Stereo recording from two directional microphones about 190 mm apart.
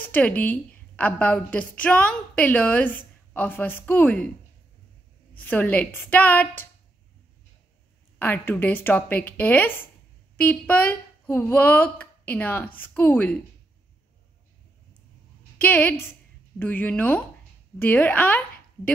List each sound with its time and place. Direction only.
0.1 s speech: 10° left (ahead or behind)
5.5 s speech: 10° left (ahead or behind)
8.2 s speech: 10° left (ahead or behind)
15.5 s a woman's voice: 10° left (ahead or behind)